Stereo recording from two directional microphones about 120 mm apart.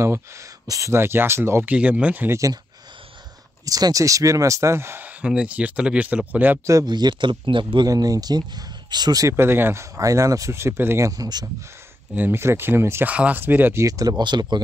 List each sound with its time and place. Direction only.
0.0 s speech: 25° right (ahead or behind)
2.3 s speech: 30° right (ahead or behind)
3.6 s speech: 30° right (ahead or behind); by 6.6 s 15° right (ahead or behind)
6.6 s speech: 30° right (ahead or behind)
7.9 s speech: 30° right (ahead or behind)
12.2 s speech: 20° right (ahead or behind)
13.8 s speech: 30° right (ahead or behind)